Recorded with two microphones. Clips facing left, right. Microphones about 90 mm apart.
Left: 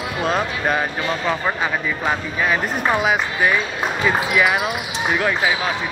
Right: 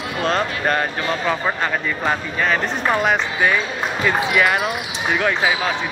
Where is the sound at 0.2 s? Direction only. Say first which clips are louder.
Right 1 dB; 5° left (ahead or behind).